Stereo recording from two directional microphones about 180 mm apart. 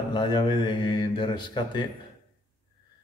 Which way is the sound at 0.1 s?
25° left (ahead or behind).